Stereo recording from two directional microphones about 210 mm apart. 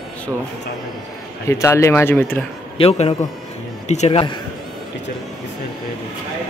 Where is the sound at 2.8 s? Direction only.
25° left (ahead or behind).